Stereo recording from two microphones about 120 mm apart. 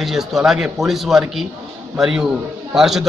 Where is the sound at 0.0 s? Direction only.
Centre (ahead or behind).